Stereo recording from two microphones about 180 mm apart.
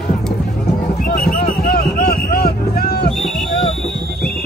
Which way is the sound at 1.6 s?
60° left (ahead or behind).